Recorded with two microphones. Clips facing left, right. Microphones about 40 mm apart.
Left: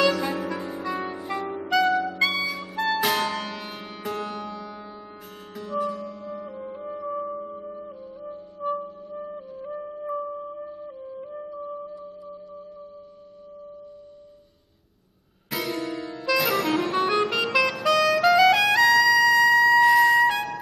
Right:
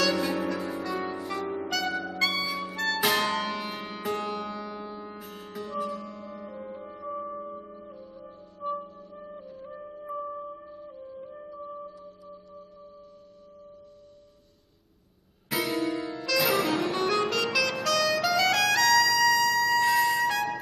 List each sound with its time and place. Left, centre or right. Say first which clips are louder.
0.7 s music: left 2 dB; centre
15.5 s music: right 1 dB; centre
19.7 s music: left 7 dB; centre